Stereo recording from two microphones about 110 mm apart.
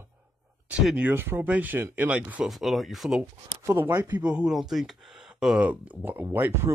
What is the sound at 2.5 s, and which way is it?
Speech, centre (ahead or behind).